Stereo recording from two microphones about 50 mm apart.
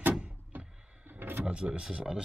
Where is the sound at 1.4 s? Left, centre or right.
Right.